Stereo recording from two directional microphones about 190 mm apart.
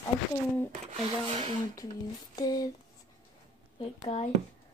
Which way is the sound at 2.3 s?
20° left (ahead or behind).